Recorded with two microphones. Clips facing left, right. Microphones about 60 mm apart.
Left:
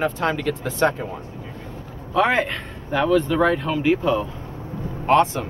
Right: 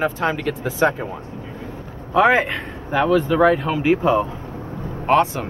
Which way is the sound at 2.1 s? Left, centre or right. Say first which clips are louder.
Right 4 dB; centre.